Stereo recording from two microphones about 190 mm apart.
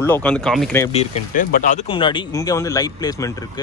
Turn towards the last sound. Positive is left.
turn(degrees=20)  # may be behind; listen again after turning